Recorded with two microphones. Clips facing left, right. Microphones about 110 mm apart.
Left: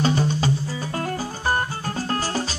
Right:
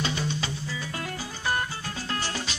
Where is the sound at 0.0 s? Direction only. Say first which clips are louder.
Left 8 dB; 40° left (ahead or behind).